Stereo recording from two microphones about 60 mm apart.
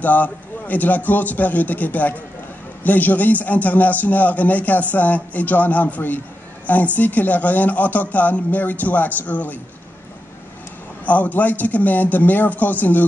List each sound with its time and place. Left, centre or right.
0.0 s a man's voice: left
11.1 s a man's voice: left